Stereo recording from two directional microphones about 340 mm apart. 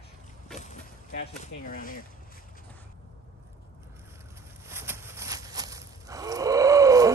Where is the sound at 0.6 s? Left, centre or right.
Left.